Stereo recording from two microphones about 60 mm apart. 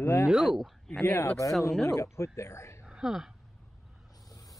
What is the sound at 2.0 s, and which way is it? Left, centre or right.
Speech, left.